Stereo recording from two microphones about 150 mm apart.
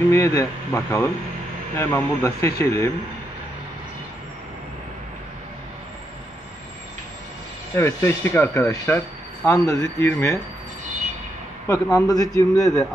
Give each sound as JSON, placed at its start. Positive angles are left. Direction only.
{"t": 0.1, "sound": "a man's voice", "side_deg": 20}
{"t": 7.7, "sound": "speech", "side_deg": 15}
{"t": 11.6, "sound": "a man's voice", "side_deg": 20}